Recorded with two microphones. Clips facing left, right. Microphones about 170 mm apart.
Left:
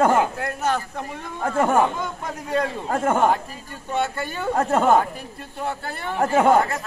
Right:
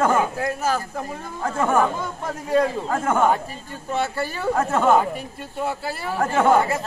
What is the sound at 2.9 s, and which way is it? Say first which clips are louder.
Speech: left 5 dB; 40° left (ahead or behind).